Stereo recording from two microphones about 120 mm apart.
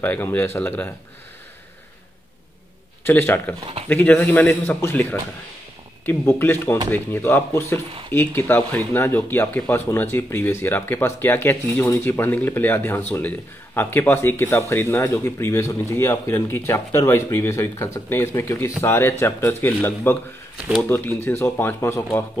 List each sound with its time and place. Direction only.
0.0 s speech: 15° left (ahead or behind)
3.0 s speech: 20° left (ahead or behind)
6.0 s speech: 15° left (ahead or behind)